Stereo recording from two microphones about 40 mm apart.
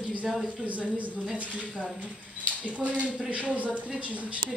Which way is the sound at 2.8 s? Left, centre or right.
Right.